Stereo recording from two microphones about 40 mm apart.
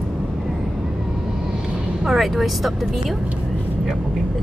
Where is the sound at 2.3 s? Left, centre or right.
Centre.